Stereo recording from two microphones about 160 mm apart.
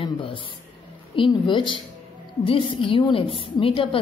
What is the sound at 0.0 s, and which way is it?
A woman's voice, 30° left (ahead or behind).